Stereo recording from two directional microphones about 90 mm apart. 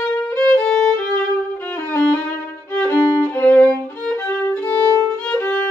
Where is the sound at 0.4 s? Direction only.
20° left (ahead or behind).